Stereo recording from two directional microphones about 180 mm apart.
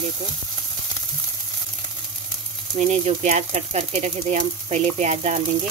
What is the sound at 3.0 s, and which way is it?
Speech, 40° right (ahead or behind).